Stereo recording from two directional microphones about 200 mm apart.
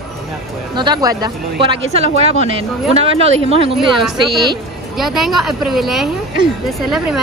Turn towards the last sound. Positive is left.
turn(degrees=0)  # may be behind; listen again after turning